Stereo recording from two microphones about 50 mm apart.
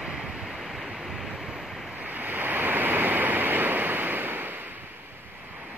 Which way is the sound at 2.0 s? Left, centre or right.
Right.